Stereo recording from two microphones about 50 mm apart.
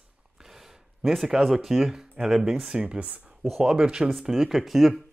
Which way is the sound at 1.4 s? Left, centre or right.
Centre.